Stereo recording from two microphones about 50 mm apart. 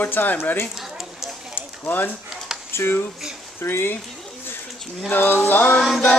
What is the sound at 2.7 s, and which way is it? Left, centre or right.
Speech, left.